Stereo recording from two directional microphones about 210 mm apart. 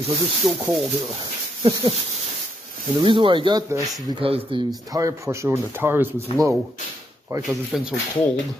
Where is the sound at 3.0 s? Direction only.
20° right (ahead or behind).